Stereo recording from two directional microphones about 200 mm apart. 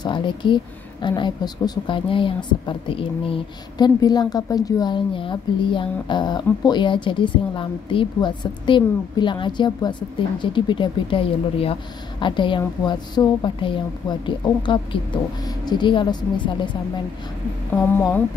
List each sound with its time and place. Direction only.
0.0 s a woman's voice: 25° left (ahead or behind)
17.9 s speech: 10° left (ahead or behind)